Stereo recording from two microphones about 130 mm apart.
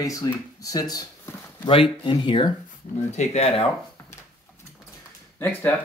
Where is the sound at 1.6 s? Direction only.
40° left (ahead or behind).